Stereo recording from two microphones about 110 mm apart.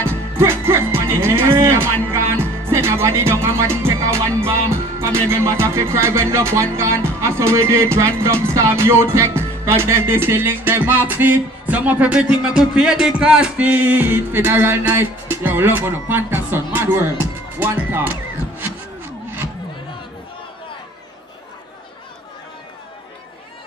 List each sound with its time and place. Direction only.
0.4 s speech: 25° right (ahead or behind)
2.0 s music: 20° right (ahead or behind)
17.6 s speech: 15° right (ahead or behind)